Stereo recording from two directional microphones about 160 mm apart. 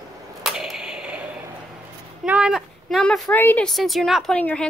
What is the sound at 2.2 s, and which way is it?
A woman's voice, 5° right (ahead or behind).